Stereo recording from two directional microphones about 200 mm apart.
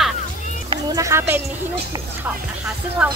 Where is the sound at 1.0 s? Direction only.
15° right (ahead or behind).